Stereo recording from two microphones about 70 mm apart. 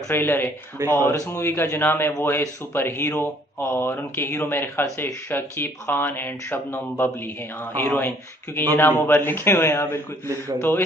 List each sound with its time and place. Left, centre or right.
0.1 s speech: left